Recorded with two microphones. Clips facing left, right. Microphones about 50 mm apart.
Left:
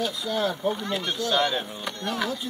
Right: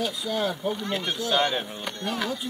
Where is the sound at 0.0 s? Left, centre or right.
Centre.